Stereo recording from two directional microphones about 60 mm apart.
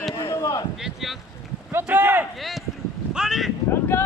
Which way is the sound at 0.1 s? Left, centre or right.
Left.